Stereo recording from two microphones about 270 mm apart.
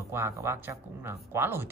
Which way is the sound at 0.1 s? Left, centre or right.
Centre.